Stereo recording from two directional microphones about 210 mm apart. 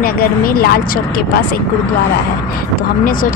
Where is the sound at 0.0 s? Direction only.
45° left (ahead or behind).